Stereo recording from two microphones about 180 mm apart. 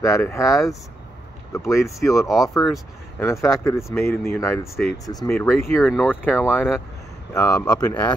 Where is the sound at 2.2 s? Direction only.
Centre (ahead or behind).